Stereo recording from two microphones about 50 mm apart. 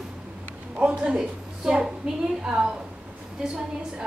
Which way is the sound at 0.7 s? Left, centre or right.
Right.